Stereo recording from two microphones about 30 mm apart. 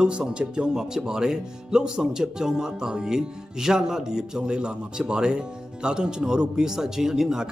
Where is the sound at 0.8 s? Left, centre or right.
Centre.